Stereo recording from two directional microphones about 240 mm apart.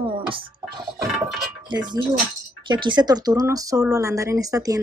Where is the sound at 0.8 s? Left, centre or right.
Centre.